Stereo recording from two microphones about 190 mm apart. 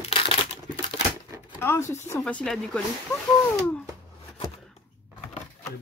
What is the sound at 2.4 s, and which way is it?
Speech, centre (ahead or behind).